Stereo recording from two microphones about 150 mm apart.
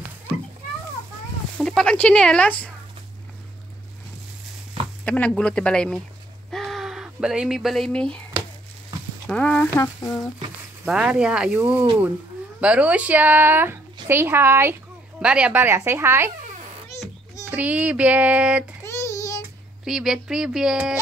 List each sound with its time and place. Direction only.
1.6 s speech: 5° left (ahead or behind)
5.0 s speech: 10° left (ahead or behind)
9.3 s speech: 5° left (ahead or behind)
10.9 s speech: 5° right (ahead or behind)
17.0 s child singing: 10° right (ahead or behind)
18.9 s child singing: 20° left (ahead or behind)
19.8 s speech: 5° right (ahead or behind)